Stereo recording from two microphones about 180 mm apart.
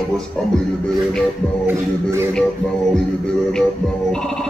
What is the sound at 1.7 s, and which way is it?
Music, 15° right (ahead or behind).